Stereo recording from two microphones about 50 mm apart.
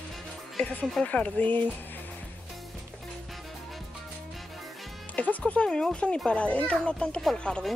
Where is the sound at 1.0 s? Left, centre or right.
Left.